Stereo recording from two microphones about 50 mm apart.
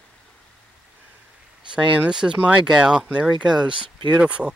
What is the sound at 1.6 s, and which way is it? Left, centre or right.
Speech, centre.